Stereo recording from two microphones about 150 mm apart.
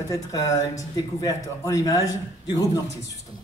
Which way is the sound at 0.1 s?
20° left (ahead or behind).